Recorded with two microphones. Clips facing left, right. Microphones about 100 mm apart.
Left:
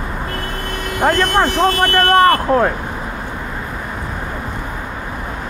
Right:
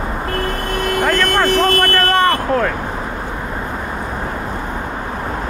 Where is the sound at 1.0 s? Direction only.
20° left (ahead or behind).